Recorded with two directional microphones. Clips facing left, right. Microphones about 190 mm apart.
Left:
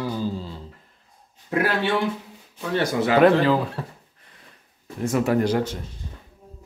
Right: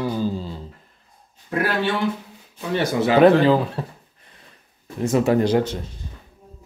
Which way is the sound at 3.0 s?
25° right (ahead or behind).